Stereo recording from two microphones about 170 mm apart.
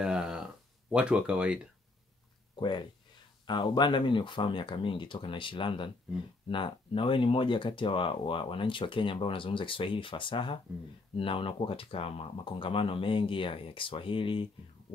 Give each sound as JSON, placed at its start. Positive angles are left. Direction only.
{"t": 0.0, "sound": "a sound", "side_deg": -5}
{"t": 0.9, "sound": "speech", "side_deg": -5}
{"t": 3.4, "sound": "speech", "side_deg": 25}